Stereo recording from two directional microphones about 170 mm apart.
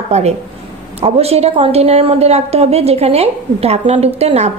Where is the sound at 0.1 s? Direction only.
40° right (ahead or behind).